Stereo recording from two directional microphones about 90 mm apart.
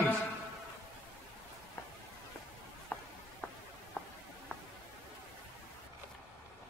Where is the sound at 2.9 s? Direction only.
20° left (ahead or behind).